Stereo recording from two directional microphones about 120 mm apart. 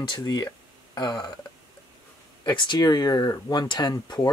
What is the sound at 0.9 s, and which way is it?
Burping, 30° left (ahead or behind).